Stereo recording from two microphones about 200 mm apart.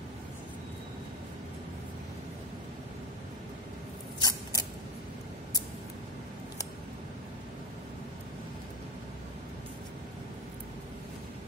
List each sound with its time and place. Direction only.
4.2 s mechanisms: 20° left (ahead or behind)